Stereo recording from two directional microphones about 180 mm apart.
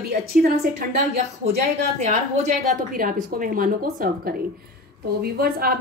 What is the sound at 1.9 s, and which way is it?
A woman's voice, 40° right (ahead or behind).